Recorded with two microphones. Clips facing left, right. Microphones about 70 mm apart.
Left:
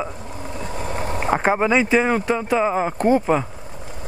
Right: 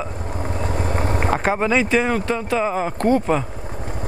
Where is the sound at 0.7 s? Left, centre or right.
Right.